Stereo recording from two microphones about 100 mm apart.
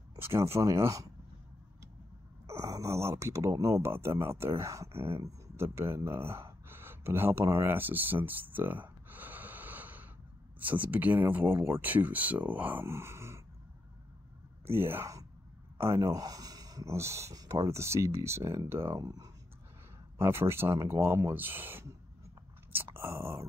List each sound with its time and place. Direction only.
0.1 s speech: 30° right (ahead or behind)
2.4 s speech: 35° right (ahead or behind)
14.7 s speech: 25° right (ahead or behind)
20.2 s speech: 25° right (ahead or behind)
22.8 s a sound: 25° right (ahead or behind)